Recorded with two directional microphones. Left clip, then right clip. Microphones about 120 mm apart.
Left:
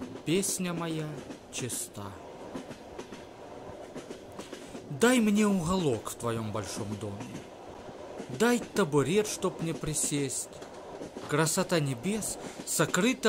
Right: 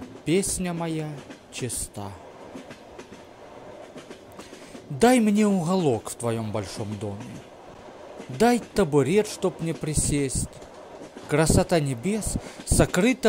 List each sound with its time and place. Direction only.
0.2 s speech: 45° right (ahead or behind)
4.9 s speech: 45° right (ahead or behind)
6.8 s speech: centre (ahead or behind)
8.4 s speech: 45° right (ahead or behind)